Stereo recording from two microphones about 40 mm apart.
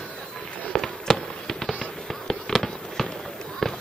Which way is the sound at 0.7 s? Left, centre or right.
Centre.